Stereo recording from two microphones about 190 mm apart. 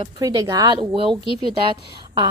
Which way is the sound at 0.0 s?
20° right (ahead or behind).